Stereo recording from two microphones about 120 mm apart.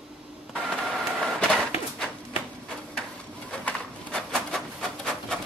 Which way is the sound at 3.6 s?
5° left (ahead or behind).